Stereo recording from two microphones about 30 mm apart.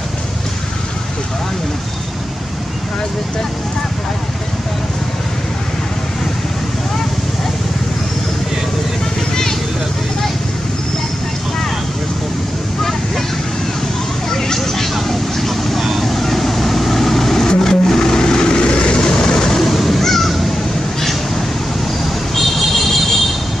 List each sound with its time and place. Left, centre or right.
9.3 s vehicle: centre
14.3 s vehicle: centre
19.6 s a sound: centre
22.3 s vehicle: centre